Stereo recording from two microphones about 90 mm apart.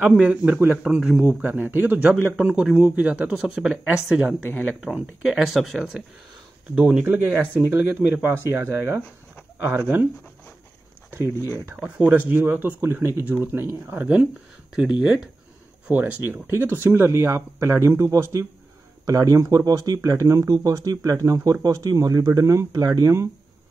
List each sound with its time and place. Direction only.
0.0 s a man's voice: 15° right (ahead or behind)
3.7 s speech: 20° right (ahead or behind)
4.8 s a man's voice: 10° right (ahead or behind)
11.8 s a man's voice: 15° right (ahead or behind); by 23.1 s 45° right (ahead or behind)